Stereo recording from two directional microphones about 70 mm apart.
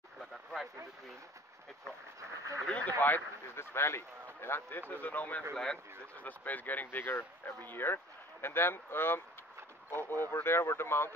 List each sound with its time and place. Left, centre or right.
0.2 s a sound: centre
2.6 s speech: centre
5.5 s speech: centre
6.2 s speech: left